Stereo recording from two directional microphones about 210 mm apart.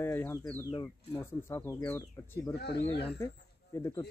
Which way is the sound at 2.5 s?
50° left (ahead or behind).